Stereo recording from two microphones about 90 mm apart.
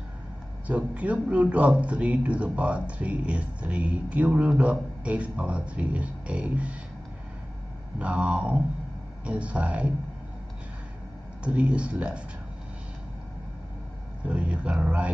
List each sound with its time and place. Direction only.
0.7 s speech: 15° right (ahead or behind)
8.0 s speech: 15° right (ahead or behind)
11.4 s speech: 15° right (ahead or behind)
14.2 s speech: 15° right (ahead or behind)